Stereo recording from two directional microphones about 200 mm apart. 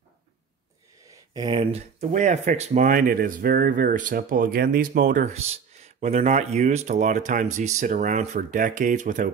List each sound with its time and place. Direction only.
1.3 s speech: 25° right (ahead or behind); by 9.3 s 40° right (ahead or behind)